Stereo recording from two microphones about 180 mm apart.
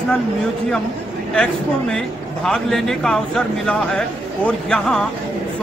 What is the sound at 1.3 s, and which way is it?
Speech, 5° left (ahead or behind).